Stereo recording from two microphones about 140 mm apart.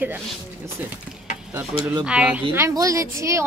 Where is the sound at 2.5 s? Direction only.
20° right (ahead or behind).